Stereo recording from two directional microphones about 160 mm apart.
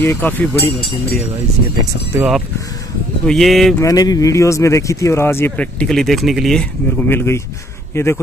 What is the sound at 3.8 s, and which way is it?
Speech, 25° left (ahead or behind).